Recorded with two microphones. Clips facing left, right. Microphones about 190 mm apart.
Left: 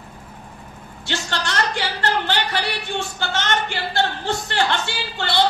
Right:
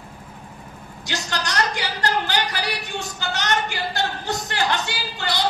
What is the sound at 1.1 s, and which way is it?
A man's voice, 40° right (ahead or behind).